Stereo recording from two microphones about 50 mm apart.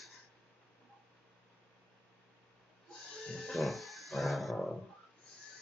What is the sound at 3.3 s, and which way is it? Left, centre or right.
Music, centre.